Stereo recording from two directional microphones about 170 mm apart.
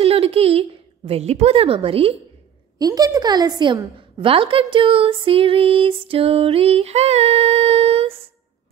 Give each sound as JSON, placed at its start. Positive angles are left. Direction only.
{"t": 0.0, "sound": "a woman's voice", "side_deg": -35}
{"t": 2.8, "sound": "a woman's voice", "side_deg": -20}